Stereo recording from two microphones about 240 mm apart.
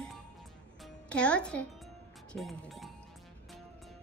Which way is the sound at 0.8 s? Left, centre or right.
Centre.